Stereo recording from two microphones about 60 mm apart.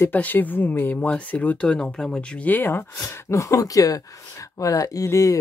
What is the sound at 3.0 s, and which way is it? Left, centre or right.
Speech, left.